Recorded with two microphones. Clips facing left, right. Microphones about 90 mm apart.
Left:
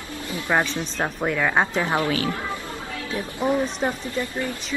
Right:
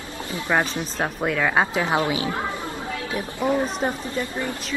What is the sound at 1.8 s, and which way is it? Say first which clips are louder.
Speech: right 1 dB; 20° right (ahead or behind).